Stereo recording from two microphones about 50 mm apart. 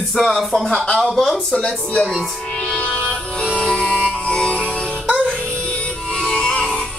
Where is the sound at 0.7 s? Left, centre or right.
Left.